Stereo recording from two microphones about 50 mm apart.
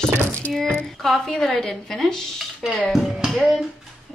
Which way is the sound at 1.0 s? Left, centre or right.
Centre.